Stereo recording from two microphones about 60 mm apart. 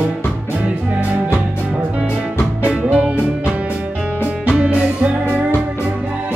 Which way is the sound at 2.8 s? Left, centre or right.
Centre.